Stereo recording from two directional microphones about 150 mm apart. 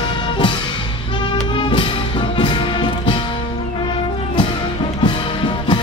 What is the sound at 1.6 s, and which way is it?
Music, 35° left (ahead or behind).